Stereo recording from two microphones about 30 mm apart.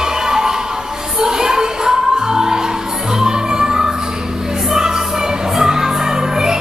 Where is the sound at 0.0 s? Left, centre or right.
Centre.